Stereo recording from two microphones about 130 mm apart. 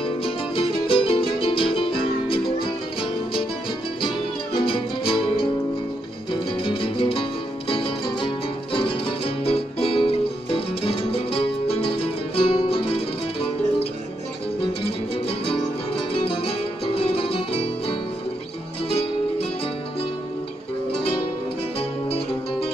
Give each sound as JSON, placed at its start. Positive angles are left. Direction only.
{"t": 0.0, "sound": "music", "side_deg": 45}
{"t": 4.6, "sound": "music", "side_deg": 40}
{"t": 14.6, "sound": "music", "side_deg": 45}
{"t": 16.8, "sound": "music", "side_deg": 45}
{"t": 21.7, "sound": "music", "side_deg": 50}